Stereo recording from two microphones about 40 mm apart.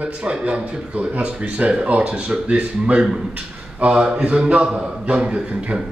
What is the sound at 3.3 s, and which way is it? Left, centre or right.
A man's voice, right.